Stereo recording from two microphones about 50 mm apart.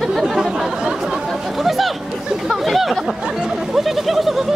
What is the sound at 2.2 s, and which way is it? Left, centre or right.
Speech, centre.